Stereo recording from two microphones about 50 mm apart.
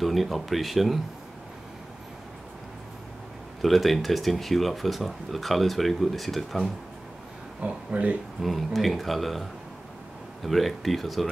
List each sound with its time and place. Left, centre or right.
0.0 s speech: centre
3.6 s speech: centre
7.6 s speech: right
8.4 s speech: centre